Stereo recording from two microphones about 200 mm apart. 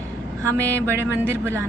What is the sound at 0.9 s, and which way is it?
Speech, 10° right (ahead or behind).